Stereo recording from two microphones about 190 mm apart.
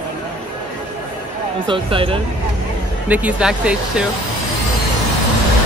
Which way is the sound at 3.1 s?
5° right (ahead or behind).